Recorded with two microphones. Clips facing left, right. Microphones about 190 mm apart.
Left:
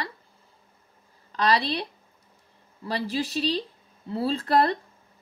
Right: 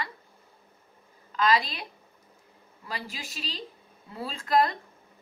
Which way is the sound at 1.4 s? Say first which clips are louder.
Left 2 dB; 35° left (ahead or behind).